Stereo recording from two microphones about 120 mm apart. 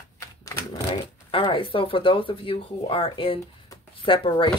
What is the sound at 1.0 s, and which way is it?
A woman's voice, 45° left (ahead or behind).